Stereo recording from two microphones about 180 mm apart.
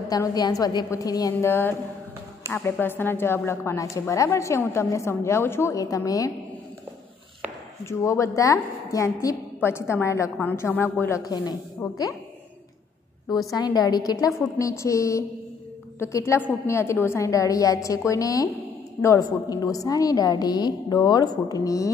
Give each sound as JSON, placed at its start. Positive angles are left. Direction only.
{"t": 0.1, "sound": "a woman's voice", "side_deg": 20}
{"t": 7.8, "sound": "a woman's voice", "side_deg": 15}
{"t": 13.5, "sound": "a woman's voice", "side_deg": 20}